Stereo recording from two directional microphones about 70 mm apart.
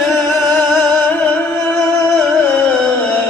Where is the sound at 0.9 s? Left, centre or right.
Left.